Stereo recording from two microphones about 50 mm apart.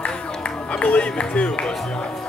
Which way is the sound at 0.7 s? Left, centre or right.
Left.